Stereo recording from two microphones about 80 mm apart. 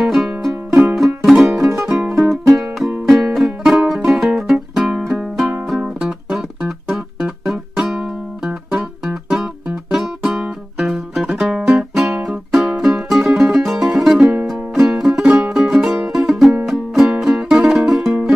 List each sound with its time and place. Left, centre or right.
0.0 s music: centre